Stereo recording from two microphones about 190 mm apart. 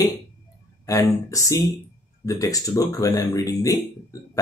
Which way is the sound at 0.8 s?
15° left (ahead or behind).